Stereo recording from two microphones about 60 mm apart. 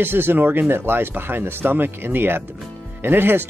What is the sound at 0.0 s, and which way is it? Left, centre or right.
Speech, right.